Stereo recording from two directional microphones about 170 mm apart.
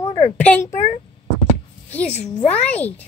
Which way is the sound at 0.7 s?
40° left (ahead or behind).